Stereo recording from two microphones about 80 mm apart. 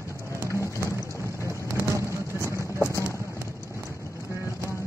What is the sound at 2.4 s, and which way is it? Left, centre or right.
Music, left.